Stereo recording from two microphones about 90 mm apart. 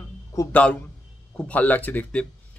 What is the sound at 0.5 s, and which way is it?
A man's voice, 15° left (ahead or behind).